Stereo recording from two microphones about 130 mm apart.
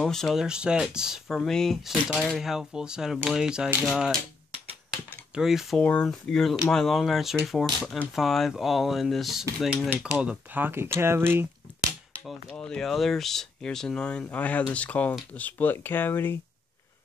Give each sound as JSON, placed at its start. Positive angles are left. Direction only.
{"t": 0.0, "sound": "speech", "side_deg": 0}
{"t": 5.3, "sound": "speech", "side_deg": -5}
{"t": 5.8, "sound": "speech", "side_deg": 10}
{"t": 12.3, "sound": "speech", "side_deg": 5}